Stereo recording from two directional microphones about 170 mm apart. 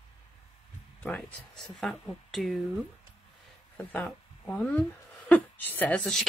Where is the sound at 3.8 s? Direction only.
5° left (ahead or behind).